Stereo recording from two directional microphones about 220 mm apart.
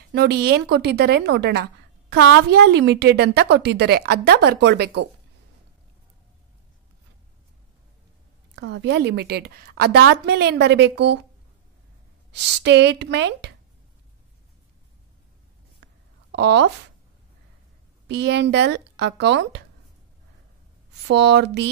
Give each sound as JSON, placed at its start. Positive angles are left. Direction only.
{"t": 0.1, "sound": "a woman's voice", "side_deg": -45}
{"t": 8.5, "sound": "a woman's voice", "side_deg": -50}
{"t": 12.3, "sound": "a woman's voice", "side_deg": -50}
{"t": 16.3, "sound": "a woman's voice", "side_deg": -50}
{"t": 18.0, "sound": "a woman's voice", "side_deg": -50}
{"t": 21.1, "sound": "a woman's voice", "side_deg": -50}